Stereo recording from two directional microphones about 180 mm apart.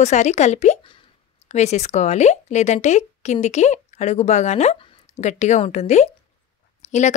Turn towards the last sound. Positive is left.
turn(degrees=40)  # may be behind; listen again after turning